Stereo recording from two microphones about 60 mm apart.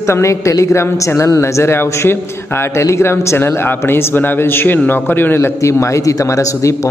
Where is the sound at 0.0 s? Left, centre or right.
Left.